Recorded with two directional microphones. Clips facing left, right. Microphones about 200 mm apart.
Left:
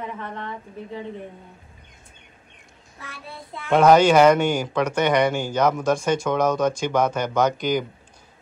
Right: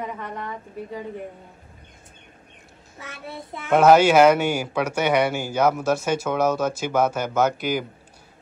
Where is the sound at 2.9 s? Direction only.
20° right (ahead or behind).